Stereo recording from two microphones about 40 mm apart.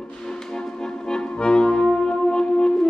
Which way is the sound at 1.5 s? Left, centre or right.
Left.